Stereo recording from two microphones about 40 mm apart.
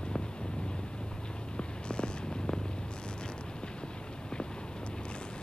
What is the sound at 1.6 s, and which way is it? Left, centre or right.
Purr, left.